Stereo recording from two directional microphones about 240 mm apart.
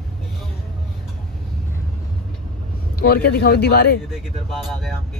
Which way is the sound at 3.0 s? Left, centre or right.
Left.